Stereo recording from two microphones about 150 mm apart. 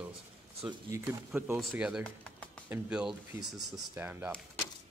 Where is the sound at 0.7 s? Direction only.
25° right (ahead or behind).